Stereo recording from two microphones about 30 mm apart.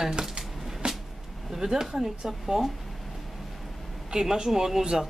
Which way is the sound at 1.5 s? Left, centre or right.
Centre.